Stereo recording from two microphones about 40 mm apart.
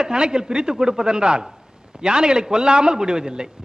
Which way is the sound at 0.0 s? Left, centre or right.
Centre.